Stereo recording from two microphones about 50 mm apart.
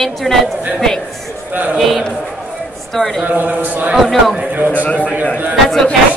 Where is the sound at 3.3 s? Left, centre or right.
Right.